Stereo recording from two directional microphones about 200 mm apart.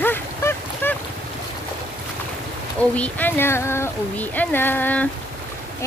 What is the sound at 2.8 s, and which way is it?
Speech, 5° left (ahead or behind).